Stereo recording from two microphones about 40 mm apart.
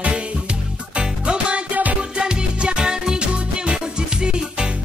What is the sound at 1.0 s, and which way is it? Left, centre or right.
Music, right.